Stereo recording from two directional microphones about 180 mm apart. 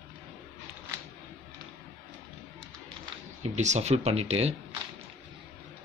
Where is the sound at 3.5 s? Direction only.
40° right (ahead or behind).